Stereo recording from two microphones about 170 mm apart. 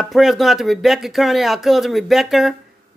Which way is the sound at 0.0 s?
Centre (ahead or behind).